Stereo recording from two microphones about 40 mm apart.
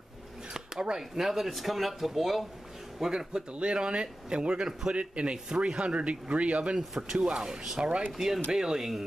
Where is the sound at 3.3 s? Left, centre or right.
Right.